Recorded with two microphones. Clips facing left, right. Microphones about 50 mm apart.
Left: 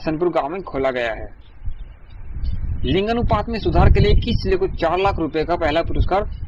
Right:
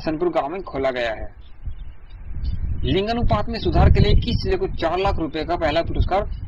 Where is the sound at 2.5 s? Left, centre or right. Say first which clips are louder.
Left 2 dB; left.